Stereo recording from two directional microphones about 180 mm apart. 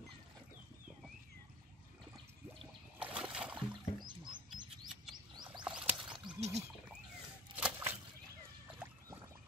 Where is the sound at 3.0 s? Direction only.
5° right (ahead or behind).